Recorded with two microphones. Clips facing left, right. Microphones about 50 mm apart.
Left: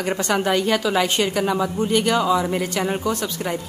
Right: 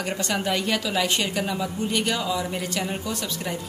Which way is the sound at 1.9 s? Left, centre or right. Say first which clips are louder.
Left 7 dB; left.